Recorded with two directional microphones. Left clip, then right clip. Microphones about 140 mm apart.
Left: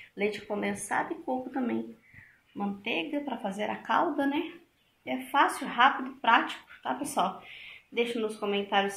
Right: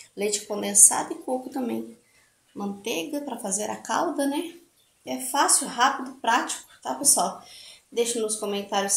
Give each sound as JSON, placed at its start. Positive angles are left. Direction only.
{"t": 0.1, "sound": "a woman's voice", "side_deg": -25}
{"t": 7.9, "sound": "a woman's voice", "side_deg": -20}